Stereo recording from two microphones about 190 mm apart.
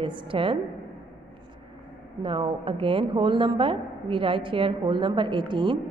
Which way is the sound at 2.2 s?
25° right (ahead or behind).